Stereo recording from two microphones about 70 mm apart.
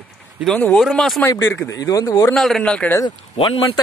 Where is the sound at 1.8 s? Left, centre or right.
Left.